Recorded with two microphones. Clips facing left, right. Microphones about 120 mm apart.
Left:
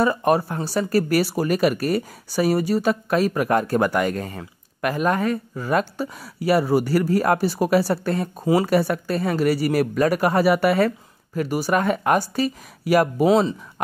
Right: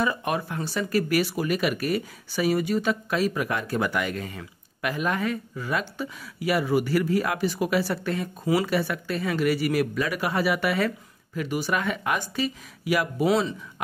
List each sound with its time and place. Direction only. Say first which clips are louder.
0.0 s speech: left 7 dB; 40° left (ahead or behind)